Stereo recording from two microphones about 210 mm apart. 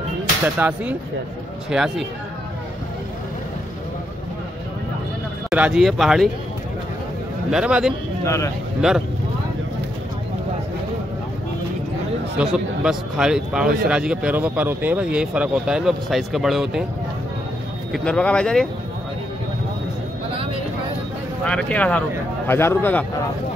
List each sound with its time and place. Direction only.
0.6 s speech: 5° right (ahead or behind)
5.5 s speech: 5° right (ahead or behind)
7.5 s speech: 5° right (ahead or behind)
12.4 s speech: 5° right (ahead or behind)
17.9 s speech: 5° left (ahead or behind)
21.5 s speech: 5° left (ahead or behind)